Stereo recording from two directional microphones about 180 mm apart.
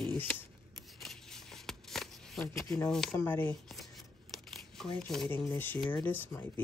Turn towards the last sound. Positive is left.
turn(degrees=10)  # may be behind; listen again after turning